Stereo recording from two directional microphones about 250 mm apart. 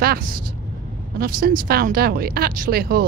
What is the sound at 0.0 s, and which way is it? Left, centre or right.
Speech, right.